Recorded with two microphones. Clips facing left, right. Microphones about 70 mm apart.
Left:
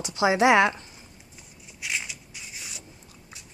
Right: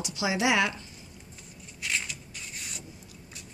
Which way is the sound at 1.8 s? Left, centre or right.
Centre.